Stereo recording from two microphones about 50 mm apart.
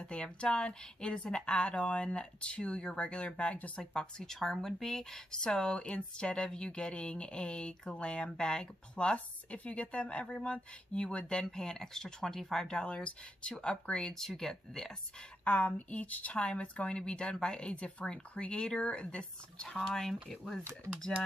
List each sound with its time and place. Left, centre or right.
0.0 s speech: left
12.8 s speech: left
14.1 s speech: centre
15.4 s speech: left
19.8 s speech: centre